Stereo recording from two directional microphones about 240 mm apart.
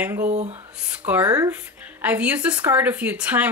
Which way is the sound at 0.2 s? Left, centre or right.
Right.